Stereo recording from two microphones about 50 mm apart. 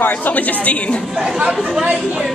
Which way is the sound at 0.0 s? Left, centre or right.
Left.